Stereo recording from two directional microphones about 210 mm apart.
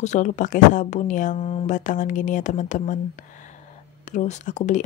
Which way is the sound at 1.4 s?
25° left (ahead or behind).